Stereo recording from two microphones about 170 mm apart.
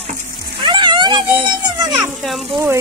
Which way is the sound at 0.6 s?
25° right (ahead or behind).